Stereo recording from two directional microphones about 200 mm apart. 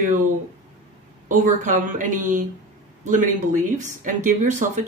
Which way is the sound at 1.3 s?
40° right (ahead or behind).